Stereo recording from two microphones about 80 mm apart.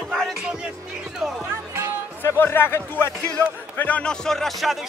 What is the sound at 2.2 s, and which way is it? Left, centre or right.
Speech, left.